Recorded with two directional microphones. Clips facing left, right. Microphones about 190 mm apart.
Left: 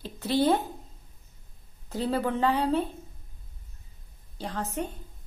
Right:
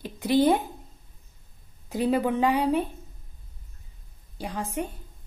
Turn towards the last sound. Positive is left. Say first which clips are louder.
# right 1 dB
turn(degrees=-10)  # may be behind; listen again after turning